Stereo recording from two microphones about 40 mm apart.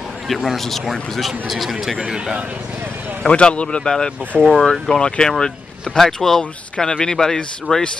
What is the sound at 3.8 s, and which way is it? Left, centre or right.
Speech, centre.